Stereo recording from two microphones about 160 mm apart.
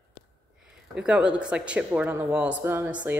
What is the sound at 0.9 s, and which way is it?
A woman's voice, 5° right (ahead or behind).